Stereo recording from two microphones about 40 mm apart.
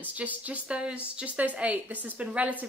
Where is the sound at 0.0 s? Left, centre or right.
Right.